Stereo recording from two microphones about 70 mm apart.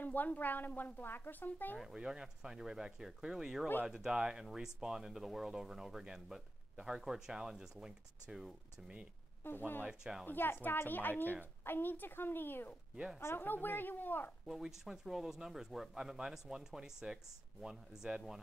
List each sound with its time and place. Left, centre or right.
0.0 s a woman's voice: left
1.8 s speech: centre
9.4 s a woman's voice: left
9.8 s speech: centre
10.2 s a woman's voice: left
12.9 s speech: centre
13.2 s a woman's voice: left
14.4 s speech: centre